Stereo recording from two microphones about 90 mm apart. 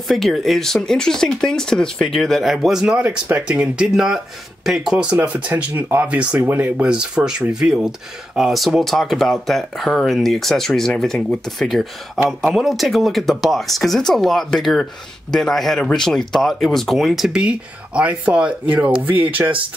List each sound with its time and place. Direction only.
0.1 s speech: centre (ahead or behind)
4.9 s speech: 15° right (ahead or behind)
6.4 s speech: 25° right (ahead or behind)
6.8 s speech: 10° right (ahead or behind)